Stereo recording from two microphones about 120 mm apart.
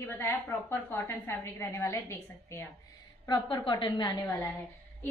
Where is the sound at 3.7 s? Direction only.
40° left (ahead or behind).